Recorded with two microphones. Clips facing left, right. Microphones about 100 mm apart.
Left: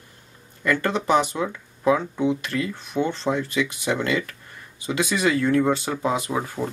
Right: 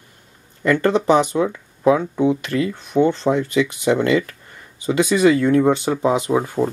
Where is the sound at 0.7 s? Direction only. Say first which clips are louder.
Right 6 dB; 20° right (ahead or behind).